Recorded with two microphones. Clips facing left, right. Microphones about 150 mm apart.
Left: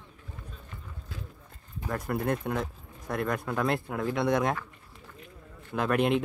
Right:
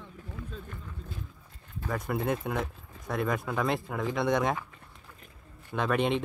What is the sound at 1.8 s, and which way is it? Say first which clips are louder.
Speech: left 1 dB; centre (ahead or behind).